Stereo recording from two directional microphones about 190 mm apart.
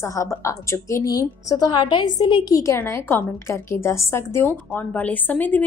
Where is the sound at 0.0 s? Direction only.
15° left (ahead or behind).